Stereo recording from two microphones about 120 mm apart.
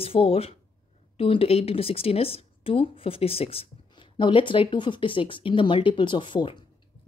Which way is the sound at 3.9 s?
45° left (ahead or behind).